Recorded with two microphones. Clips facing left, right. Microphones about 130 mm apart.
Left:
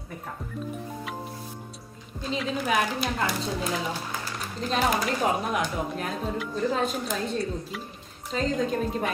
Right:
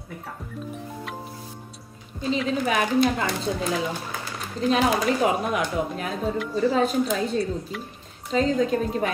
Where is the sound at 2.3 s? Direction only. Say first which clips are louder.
Right 2 dB; centre (ahead or behind).